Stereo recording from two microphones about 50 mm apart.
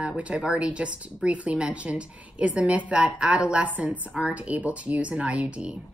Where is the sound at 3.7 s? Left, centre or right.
Right.